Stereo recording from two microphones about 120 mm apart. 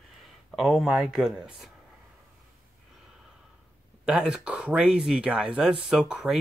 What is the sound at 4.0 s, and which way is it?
Speech, 5° right (ahead or behind).